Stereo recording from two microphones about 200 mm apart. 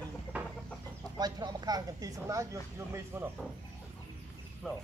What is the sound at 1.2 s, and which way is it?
Speech, 20° right (ahead or behind).